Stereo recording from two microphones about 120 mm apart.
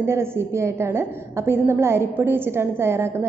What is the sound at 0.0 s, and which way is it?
A woman's voice, 20° right (ahead or behind).